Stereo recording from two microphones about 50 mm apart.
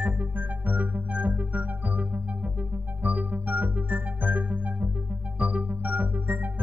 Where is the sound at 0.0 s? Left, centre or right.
Right.